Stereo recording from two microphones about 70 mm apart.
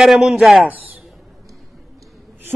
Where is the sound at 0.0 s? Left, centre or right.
Centre.